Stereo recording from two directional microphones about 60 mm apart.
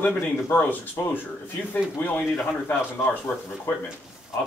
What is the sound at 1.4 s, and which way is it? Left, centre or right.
Speech, left.